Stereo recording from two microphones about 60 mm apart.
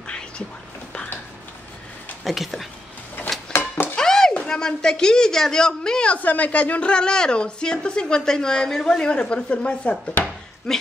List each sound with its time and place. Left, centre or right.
2.2 s speech: centre
3.9 s music: centre
4.3 s a woman's voice: centre
6.1 s a woman's voice: left
10.7 s a woman's voice: centre